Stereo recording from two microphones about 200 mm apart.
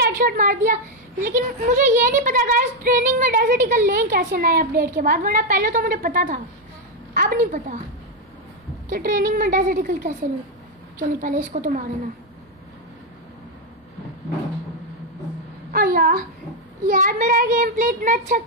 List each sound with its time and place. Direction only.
0.2 s speech: 45° right (ahead or behind)
8.8 s a woman's voice: 45° right (ahead or behind)
15.7 s a sound: 45° right (ahead or behind)
16.8 s speech: 40° right (ahead or behind)